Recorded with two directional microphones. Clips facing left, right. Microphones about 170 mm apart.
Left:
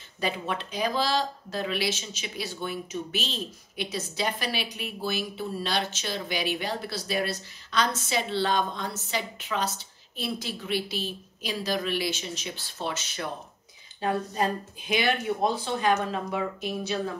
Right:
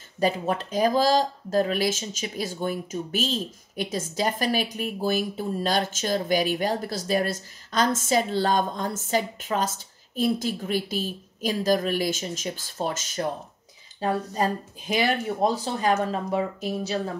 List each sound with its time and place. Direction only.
0.2 s speech: 40° right (ahead or behind)